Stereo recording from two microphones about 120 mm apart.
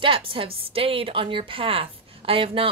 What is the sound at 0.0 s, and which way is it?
A woman's voice, 50° right (ahead or behind).